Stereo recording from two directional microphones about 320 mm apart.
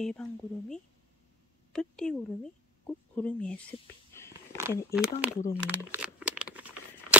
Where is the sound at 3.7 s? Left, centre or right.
Centre.